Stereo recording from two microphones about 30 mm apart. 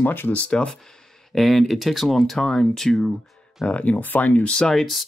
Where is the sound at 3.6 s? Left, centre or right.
Left.